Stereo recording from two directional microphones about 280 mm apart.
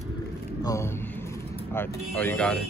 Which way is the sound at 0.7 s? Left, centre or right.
Centre.